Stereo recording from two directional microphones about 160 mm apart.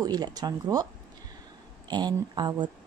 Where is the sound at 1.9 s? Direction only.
25° right (ahead or behind).